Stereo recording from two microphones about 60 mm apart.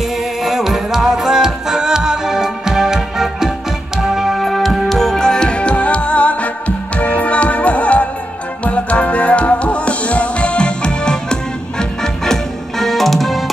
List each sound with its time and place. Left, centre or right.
0.4 s music: centre